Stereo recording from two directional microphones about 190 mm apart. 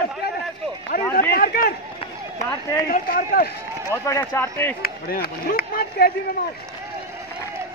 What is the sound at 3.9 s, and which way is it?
Speech, 15° left (ahead or behind).